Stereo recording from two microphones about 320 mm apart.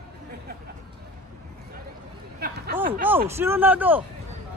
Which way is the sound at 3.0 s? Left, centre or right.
Centre.